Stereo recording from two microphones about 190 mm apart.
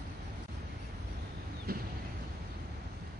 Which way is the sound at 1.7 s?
55° right (ahead or behind).